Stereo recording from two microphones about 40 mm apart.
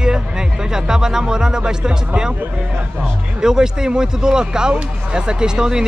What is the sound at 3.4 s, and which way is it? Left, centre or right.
Speech, centre.